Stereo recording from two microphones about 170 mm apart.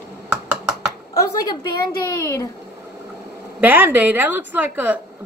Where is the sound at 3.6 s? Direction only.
10° right (ahead or behind).